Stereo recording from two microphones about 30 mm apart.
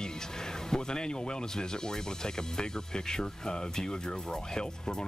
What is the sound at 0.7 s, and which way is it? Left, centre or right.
Speech, left.